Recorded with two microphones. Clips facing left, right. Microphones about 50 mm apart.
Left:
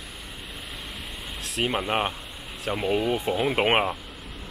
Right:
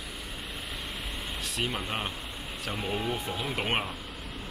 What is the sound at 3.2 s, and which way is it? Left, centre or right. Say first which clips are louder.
Speech: left 9 dB; left.